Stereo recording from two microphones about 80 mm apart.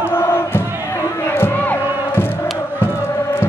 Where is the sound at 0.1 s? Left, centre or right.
Left.